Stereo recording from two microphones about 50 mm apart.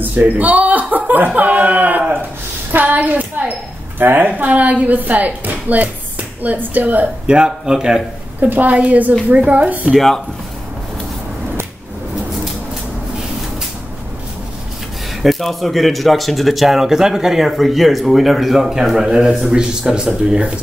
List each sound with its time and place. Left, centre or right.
0.0 s speech: right
2.7 s a sound: right
4.0 s a woman's voice: right
4.5 s a woman's voice: right
7.2 s speech: centre
8.4 s a woman's voice: right
9.9 s speech: centre
15.2 s speech: centre